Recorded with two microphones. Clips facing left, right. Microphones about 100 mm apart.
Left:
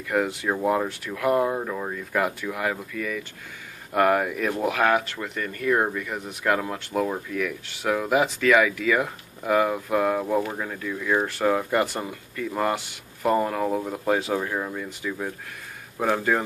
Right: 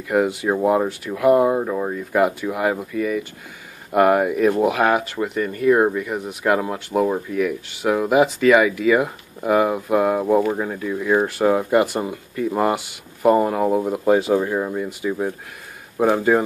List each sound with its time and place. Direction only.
0.1 s speech: 10° right (ahead or behind)
0.8 s speech: 10° right (ahead or behind)
15.0 s speech: 25° right (ahead or behind)